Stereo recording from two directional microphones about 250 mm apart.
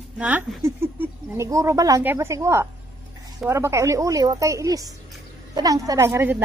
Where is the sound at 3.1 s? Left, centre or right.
Centre.